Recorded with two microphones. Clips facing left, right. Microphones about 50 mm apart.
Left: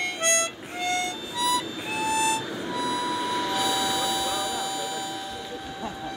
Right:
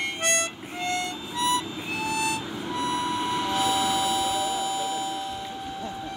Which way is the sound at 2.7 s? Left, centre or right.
Right.